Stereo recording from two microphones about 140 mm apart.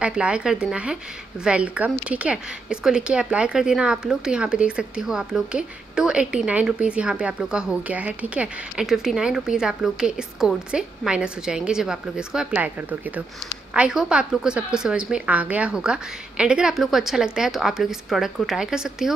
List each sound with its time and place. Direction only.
0.0 s a woman's voice: 10° right (ahead or behind)